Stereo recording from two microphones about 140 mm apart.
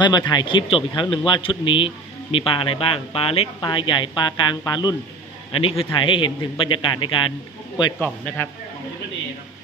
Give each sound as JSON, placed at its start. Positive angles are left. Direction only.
{"t": 0.0, "sound": "speech", "side_deg": 30}
{"t": 5.5, "sound": "speech", "side_deg": 40}